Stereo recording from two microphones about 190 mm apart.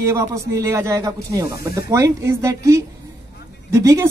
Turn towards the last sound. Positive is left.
turn(degrees=-15)  # may be behind; listen again after turning